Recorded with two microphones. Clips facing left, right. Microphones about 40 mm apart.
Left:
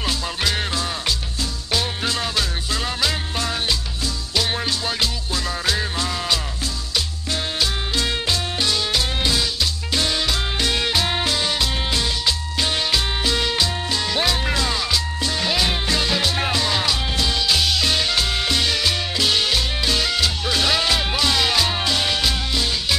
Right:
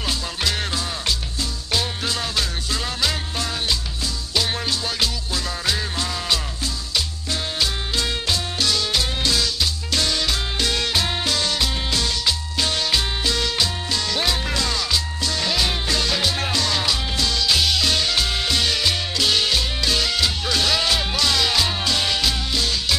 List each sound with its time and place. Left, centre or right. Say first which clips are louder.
1.7 s music: left 1 dB; centre
7.5 s music: even; centre
8.5 s music: right 1 dB; centre